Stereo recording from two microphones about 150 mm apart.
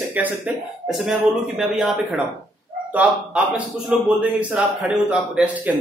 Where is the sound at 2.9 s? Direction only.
10° right (ahead or behind).